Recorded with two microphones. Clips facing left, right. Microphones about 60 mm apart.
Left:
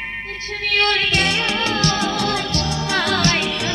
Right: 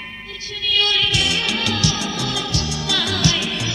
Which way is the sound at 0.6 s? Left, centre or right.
Left.